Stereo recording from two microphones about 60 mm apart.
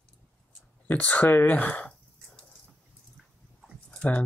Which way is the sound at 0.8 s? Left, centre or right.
Left.